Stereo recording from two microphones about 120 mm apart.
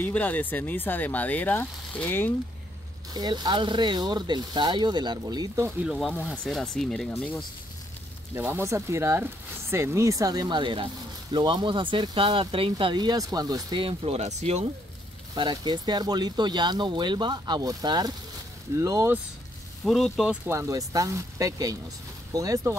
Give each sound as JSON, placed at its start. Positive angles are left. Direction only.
{"t": 0.0, "sound": "speech", "side_deg": 15}
{"t": 3.1, "sound": "speech", "side_deg": -35}
{"t": 6.3, "sound": "speech", "side_deg": 5}
{"t": 8.4, "sound": "speech", "side_deg": -20}
{"t": 13.8, "sound": "speech", "side_deg": -55}
{"t": 15.3, "sound": "speech", "side_deg": -40}
{"t": 19.8, "sound": "speech", "side_deg": 0}
{"t": 20.4, "sound": "speech", "side_deg": -25}